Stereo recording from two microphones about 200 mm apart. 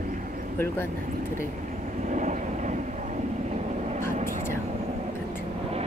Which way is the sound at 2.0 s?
40° right (ahead or behind).